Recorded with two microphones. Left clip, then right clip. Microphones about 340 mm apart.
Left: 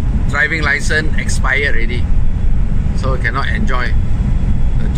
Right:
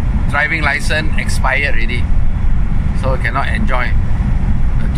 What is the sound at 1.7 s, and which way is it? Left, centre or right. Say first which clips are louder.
Speech: even; centre.